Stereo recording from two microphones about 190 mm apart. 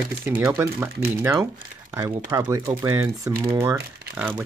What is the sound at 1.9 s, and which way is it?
Speech, 15° right (ahead or behind).